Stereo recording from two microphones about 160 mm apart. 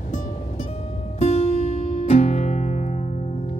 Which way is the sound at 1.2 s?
40° left (ahead or behind).